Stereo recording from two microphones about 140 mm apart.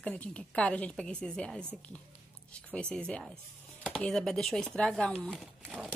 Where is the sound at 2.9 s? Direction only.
5° left (ahead or behind).